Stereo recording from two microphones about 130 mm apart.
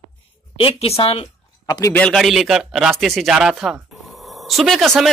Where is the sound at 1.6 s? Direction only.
30° left (ahead or behind).